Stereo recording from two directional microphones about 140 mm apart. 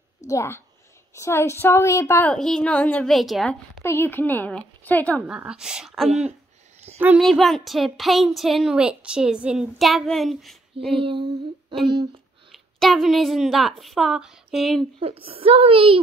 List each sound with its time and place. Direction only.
0.3 s a woman's voice: 20° left (ahead or behind)
2.3 s speech: 5° left (ahead or behind)
3.8 s a woman's voice: 15° left (ahead or behind)
5.2 s speech: 5° right (ahead or behind)
7.2 s speech: centre (ahead or behind)
11.0 s female singing: 40° right (ahead or behind)
11.9 s speech: 30° right (ahead or behind)
12.7 s speech: centre (ahead or behind)
15.0 s a woman's voice: 45° right (ahead or behind)